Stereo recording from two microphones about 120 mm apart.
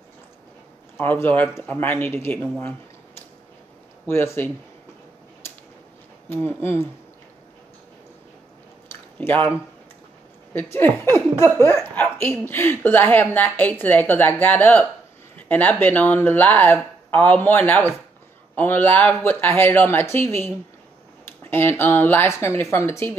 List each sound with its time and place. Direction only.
0.9 s speech: 15° left (ahead or behind)
4.0 s speech: 20° left (ahead or behind)
6.2 s speech: 20° left (ahead or behind)
9.2 s speech: 15° left (ahead or behind)
10.5 s speech: 15° left (ahead or behind)
15.3 s a sound: 15° left (ahead or behind)
15.8 s speech: 15° left (ahead or behind)